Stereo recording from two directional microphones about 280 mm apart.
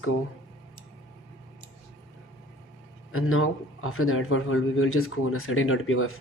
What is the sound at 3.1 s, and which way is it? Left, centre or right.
Speech, left.